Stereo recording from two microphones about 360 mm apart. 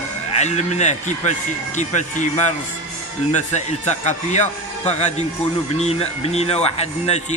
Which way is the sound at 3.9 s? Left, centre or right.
Centre.